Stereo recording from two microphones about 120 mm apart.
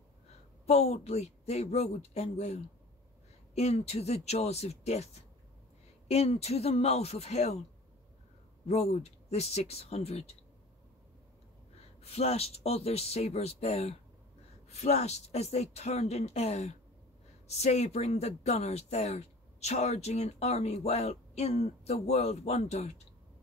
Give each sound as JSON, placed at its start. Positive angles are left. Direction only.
{"t": 0.7, "sound": "speech", "side_deg": 65}
{"t": 8.6, "sound": "speech", "side_deg": 65}
{"t": 12.0, "sound": "speech", "side_deg": 60}